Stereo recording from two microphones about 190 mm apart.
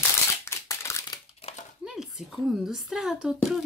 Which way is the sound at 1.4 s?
30° left (ahead or behind).